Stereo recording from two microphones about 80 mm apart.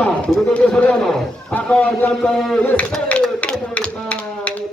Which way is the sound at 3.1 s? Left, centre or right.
Centre.